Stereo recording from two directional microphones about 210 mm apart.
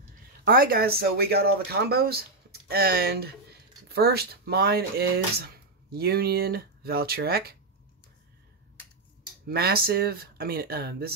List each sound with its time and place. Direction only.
0.5 s speech: 45° right (ahead or behind)
9.5 s speech: 50° right (ahead or behind)